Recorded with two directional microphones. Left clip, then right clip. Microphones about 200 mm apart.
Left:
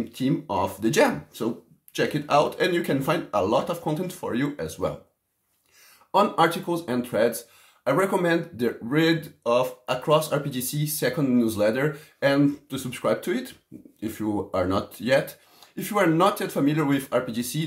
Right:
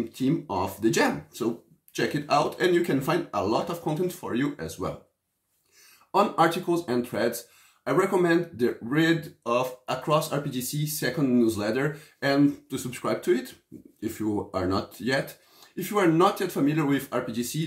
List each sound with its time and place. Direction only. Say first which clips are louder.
0.1 s speech: left 4 dB; 20° left (ahead or behind)
6.1 s speech: left 2 dB; 20° left (ahead or behind)